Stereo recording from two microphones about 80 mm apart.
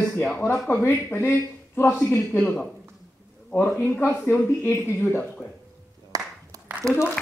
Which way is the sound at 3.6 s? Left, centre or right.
Left.